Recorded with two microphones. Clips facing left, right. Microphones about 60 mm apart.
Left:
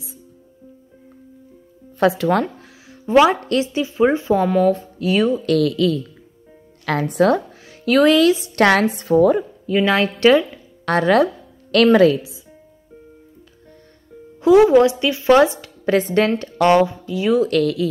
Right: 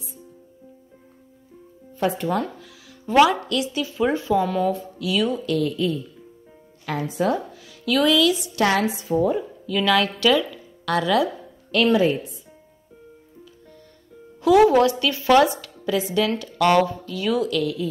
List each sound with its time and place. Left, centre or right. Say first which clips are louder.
2.0 s speech: left 7 dB; left
2.4 s music: left 4 dB; left
3.3 s speech: left 4 dB; left
5.4 s a woman's voice: left 6 dB; left
6.9 s a woman's voice: left 7 dB; left
7.5 s speech: left 6 dB; left
8.5 s a woman's voice: left 6 dB; left
9.7 s a woman's voice: left 3 dB; left
11.7 s a woman's voice: left 6 dB; left
14.4 s speech: left 4 dB; left
15.8 s a woman's voice: left 6 dB; left
16.3 s speech: left 4 dB; left
17.5 s a woman's voice: left 6 dB; left